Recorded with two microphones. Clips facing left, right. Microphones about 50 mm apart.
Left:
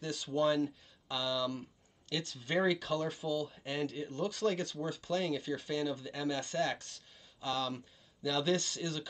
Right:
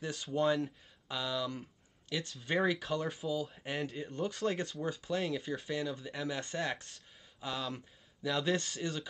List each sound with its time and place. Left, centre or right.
0.1 s speech: centre
3.3 s speech: centre